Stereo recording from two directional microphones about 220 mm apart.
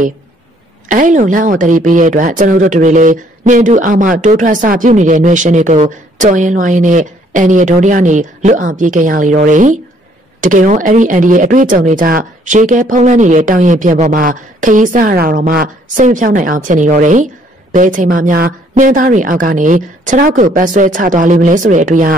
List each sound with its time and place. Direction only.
0.8 s speech: 35° right (ahead or behind)